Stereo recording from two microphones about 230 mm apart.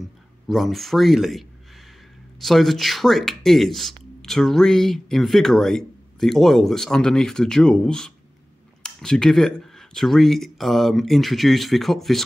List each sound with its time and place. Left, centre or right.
0.5 s speech: centre